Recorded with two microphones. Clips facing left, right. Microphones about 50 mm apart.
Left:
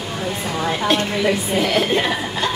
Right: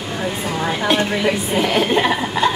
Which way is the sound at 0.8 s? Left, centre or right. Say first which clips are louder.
Right 1 dB; centre.